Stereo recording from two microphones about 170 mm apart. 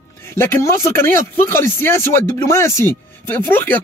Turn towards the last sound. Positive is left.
turn(degrees=10)  # may be behind; listen again after turning